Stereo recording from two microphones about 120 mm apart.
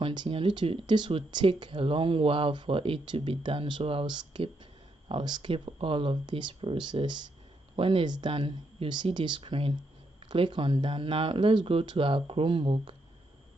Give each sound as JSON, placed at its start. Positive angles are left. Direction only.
{"t": 0.0, "sound": "speech", "side_deg": -45}